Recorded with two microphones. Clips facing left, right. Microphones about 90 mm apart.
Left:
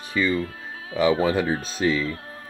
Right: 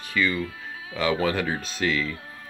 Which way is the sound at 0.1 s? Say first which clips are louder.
Left 2 dB; 25° left (ahead or behind).